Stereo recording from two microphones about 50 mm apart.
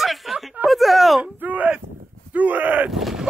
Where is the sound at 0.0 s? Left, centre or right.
Centre.